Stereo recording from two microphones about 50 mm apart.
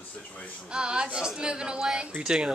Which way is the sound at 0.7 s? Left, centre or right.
Centre.